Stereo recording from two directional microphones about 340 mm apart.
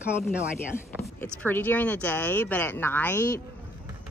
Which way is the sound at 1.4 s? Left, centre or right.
Centre.